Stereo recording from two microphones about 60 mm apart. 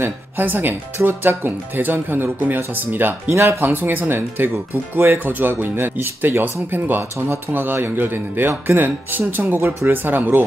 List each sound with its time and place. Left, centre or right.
0.0 s speech: right